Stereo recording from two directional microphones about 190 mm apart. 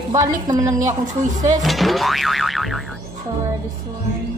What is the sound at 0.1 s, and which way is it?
Speech, 20° right (ahead or behind).